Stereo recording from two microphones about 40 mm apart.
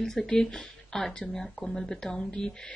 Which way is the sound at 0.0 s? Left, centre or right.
Centre.